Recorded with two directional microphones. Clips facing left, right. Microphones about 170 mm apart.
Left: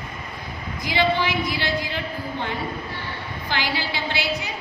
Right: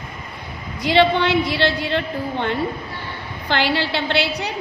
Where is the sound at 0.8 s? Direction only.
70° right (ahead or behind).